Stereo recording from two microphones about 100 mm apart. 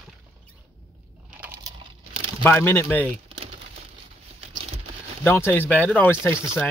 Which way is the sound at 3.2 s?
65° right (ahead or behind).